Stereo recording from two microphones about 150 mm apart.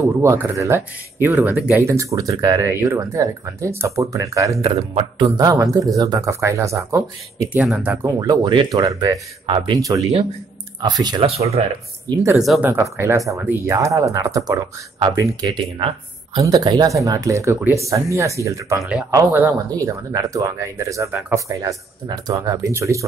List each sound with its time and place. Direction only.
0.0 s speech: 20° right (ahead or behind)
4.6 s a man's voice: 35° right (ahead or behind)
5.5 s speech: 20° right (ahead or behind)
8.2 s speech: 25° right (ahead or behind)
11.2 s speech: 45° right (ahead or behind)
12.1 s speech: 20° right (ahead or behind)
12.4 s speech: 5° right (ahead or behind)
12.6 s speech: 15° right (ahead or behind)
18.8 s speech: 5° right (ahead or behind)
19.0 s speech: 20° right (ahead or behind)